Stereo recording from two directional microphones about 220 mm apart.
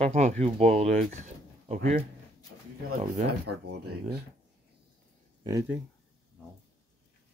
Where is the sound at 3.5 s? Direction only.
90° right.